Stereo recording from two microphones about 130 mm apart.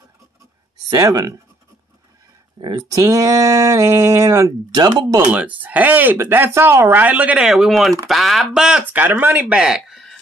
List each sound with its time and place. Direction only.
0.8 s speech: 30° right (ahead or behind)
2.6 s speech: 30° right (ahead or behind)
5.3 s speech: 10° right (ahead or behind)